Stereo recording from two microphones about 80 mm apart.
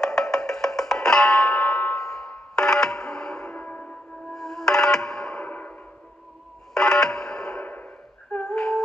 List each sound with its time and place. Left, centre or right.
0.0 s music: centre
4.3 s music: centre
6.7 s telephone dialing: centre
7.7 s a sound: left
8.5 s humming: centre